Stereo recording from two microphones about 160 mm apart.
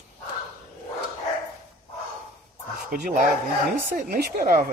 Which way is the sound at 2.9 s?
55° right (ahead or behind).